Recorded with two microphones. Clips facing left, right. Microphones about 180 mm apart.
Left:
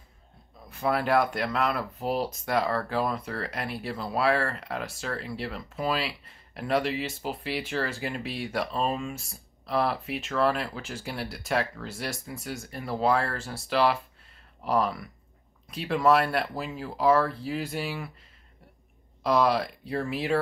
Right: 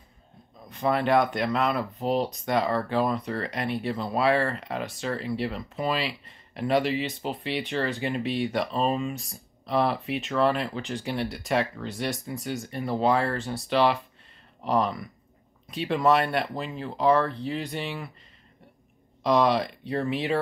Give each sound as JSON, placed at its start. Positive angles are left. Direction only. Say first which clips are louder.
{"t": 0.7, "sound": "speech", "louder": "right 2 dB", "side_deg": 0}
{"t": 19.2, "sound": "speech", "louder": "right 2 dB", "side_deg": 0}